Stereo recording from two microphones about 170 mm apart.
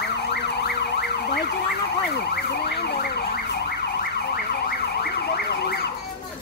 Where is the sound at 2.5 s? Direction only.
75° left (ahead or behind).